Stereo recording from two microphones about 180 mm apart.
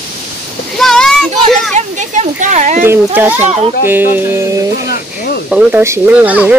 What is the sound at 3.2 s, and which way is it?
Speech, 10° right (ahead or behind).